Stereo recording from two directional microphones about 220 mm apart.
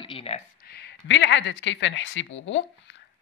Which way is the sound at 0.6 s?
50° left (ahead or behind).